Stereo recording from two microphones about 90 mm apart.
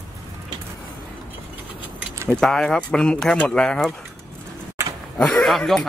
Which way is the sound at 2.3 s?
5° left (ahead or behind).